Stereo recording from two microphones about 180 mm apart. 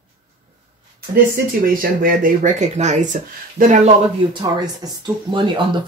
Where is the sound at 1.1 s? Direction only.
55° right (ahead or behind).